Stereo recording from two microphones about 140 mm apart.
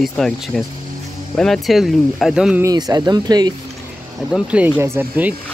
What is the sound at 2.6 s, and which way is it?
Speech, 25° right (ahead or behind).